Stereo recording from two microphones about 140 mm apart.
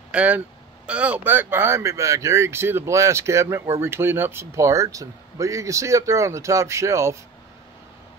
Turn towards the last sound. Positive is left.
turn(degrees=-20)  # may be behind; listen again after turning